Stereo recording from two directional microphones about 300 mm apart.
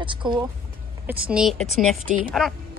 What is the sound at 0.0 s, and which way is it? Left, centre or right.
Speech, centre.